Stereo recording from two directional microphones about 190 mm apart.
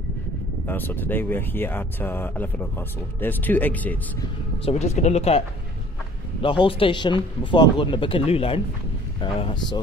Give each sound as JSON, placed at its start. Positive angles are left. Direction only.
{"t": 0.7, "sound": "speech", "side_deg": 10}
{"t": 4.6, "sound": "speech", "side_deg": 35}
{"t": 6.4, "sound": "speech", "side_deg": 25}